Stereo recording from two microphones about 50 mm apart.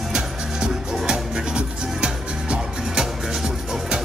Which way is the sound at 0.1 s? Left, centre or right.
Centre.